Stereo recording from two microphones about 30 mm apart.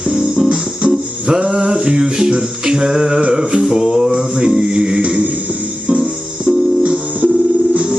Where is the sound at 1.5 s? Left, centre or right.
Right.